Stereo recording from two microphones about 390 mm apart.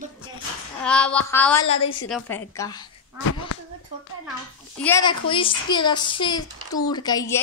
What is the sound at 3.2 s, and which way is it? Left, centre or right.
Speech, left.